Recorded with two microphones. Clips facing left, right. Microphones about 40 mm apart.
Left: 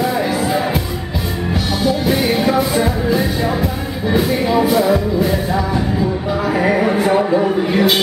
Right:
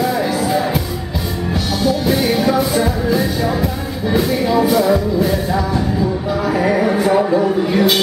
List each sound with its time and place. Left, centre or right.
0.0 s music: centre
1.8 s music: centre
7.2 s a sound: centre